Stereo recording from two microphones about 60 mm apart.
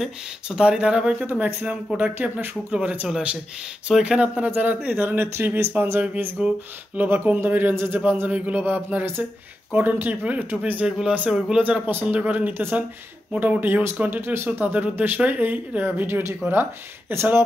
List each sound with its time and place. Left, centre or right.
0.5 s speech: centre
11.2 s speech: centre
11.8 s speech: right
14.6 s speech: right